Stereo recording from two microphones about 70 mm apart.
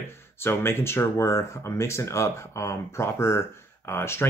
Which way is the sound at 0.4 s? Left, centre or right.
Left.